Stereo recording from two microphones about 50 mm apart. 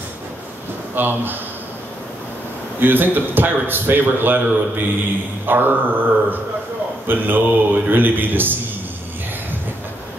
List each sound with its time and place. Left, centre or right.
0.9 s a man's voice: right
2.8 s a man's voice: right